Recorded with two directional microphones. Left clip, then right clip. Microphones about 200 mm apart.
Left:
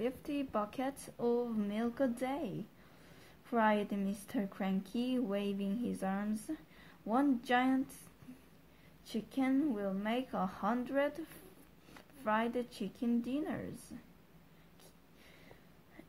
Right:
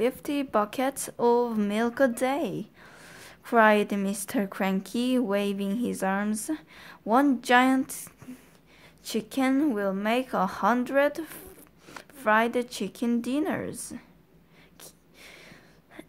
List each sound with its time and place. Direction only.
0.0 s a woman's voice: 25° right (ahead or behind)
9.0 s a woman's voice: 30° right (ahead or behind)